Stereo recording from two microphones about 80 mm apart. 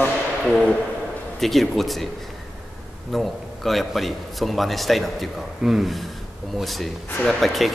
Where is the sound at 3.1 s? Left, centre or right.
Centre.